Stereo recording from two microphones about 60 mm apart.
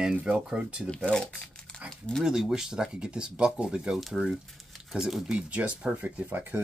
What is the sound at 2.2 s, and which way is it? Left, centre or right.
Speech, centre.